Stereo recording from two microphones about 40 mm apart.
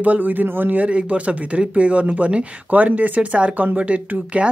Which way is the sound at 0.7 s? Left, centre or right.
Right.